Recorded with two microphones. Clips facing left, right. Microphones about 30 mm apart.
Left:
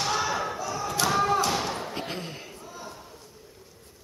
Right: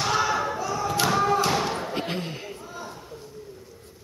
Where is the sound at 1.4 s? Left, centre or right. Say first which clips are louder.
Right 3 dB; centre.